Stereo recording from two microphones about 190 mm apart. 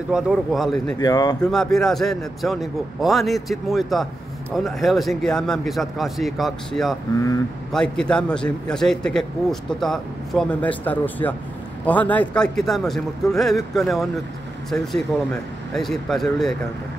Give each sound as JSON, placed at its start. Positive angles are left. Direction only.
{"t": 0.1, "sound": "a man's voice", "side_deg": 0}
{"t": 0.9, "sound": "speech", "side_deg": 20}
{"t": 1.4, "sound": "a man's voice", "side_deg": 0}